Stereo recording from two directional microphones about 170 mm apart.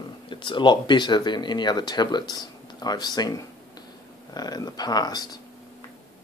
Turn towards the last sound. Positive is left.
turn(degrees=25)  # may be behind; listen again after turning